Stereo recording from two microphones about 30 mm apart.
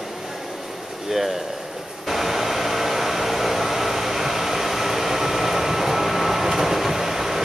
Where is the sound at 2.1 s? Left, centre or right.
Centre.